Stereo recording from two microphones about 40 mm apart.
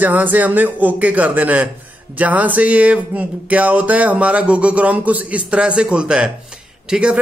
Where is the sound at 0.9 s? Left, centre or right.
Right.